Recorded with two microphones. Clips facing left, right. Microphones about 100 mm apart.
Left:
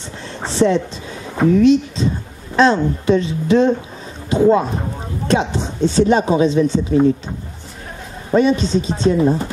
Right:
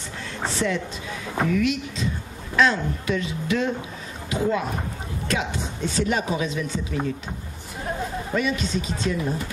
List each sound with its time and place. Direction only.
0.5 s speech: 30° left (ahead or behind)
8.3 s speech: 30° left (ahead or behind)